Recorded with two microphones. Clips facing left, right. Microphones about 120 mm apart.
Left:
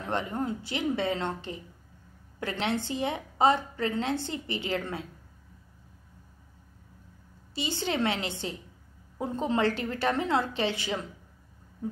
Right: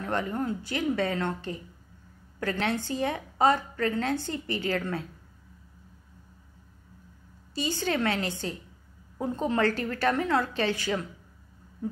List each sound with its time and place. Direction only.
0.0 s a woman's voice: 20° left (ahead or behind)
7.5 s a woman's voice: 20° left (ahead or behind)